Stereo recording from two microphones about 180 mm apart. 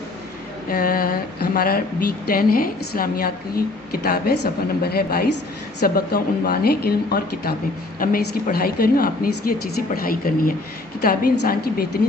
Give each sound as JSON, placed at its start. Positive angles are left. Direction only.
{"t": 0.7, "sound": "speech", "side_deg": 55}